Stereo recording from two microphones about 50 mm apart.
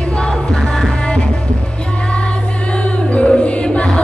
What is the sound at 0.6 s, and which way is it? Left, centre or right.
Music, centre.